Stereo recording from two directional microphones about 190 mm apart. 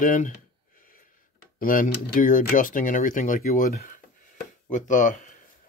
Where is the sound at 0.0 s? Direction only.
45° left (ahead or behind).